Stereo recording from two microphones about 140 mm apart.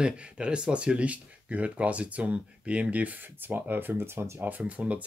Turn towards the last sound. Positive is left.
turn(degrees=-5)  # may be behind; listen again after turning